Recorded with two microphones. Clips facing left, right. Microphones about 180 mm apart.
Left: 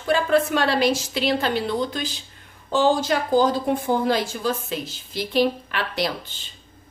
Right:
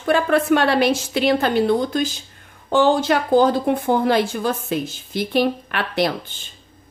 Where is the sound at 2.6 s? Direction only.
60° right (ahead or behind).